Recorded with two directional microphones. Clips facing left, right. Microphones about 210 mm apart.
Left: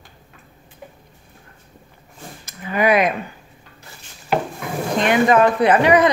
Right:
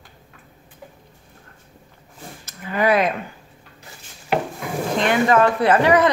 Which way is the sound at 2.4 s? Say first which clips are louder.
Left 1 dB; 15° left (ahead or behind).